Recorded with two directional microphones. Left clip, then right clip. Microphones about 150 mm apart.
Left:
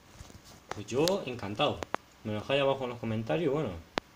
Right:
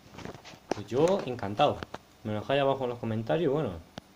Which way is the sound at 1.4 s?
20° right (ahead or behind).